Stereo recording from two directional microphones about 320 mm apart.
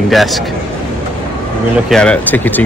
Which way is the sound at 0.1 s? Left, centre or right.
Centre.